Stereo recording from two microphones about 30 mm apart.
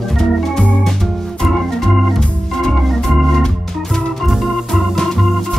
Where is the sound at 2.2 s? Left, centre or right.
Centre.